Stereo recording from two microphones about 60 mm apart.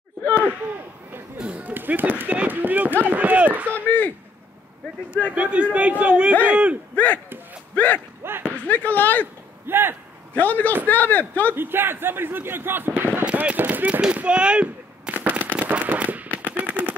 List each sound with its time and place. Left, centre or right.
1.4 s a sound: centre
1.7 s run: right
3.7 s a sound: left
5.3 s a man's voice: right
7.7 s speech: left
8.2 s basketball bounce: right
8.5 s speech: left
9.7 s speech: right
10.3 s speech: left
11.5 s speech: right
14.1 s a sound: centre
15.1 s firecracker: right
16.4 s machine gun: right